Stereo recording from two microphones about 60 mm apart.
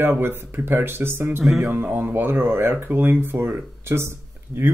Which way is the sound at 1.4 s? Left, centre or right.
Centre.